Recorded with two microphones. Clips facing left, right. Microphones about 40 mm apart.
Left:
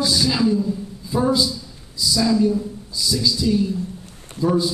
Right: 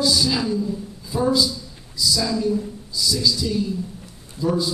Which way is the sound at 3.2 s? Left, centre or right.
Centre.